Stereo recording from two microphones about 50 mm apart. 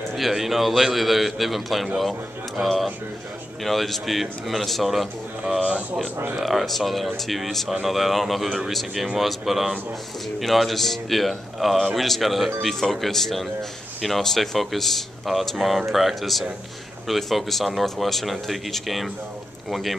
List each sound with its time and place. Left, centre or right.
0.1 s a man's voice: centre
5.6 s speech: centre
6.3 s a man's voice: centre